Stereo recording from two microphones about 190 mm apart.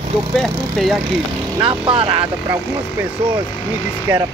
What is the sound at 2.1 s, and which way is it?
Speech, 10° right (ahead or behind).